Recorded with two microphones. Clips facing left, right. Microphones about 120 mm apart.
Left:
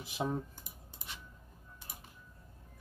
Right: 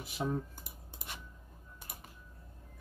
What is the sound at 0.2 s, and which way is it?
Speech, 20° left (ahead or behind).